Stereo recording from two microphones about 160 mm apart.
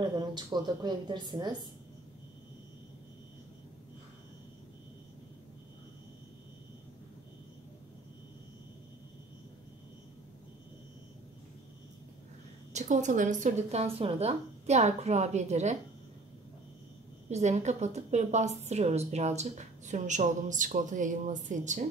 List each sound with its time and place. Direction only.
0.0 s a woman's voice: 25° right (ahead or behind)
12.7 s a woman's voice: 50° right (ahead or behind)
17.3 s a woman's voice: 45° right (ahead or behind)